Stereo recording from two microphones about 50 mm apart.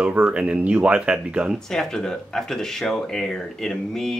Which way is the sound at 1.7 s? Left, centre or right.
Centre.